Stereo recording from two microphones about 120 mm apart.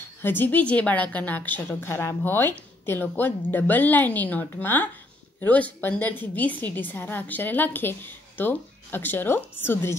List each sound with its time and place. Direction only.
0.2 s a woman's voice: 15° left (ahead or behind)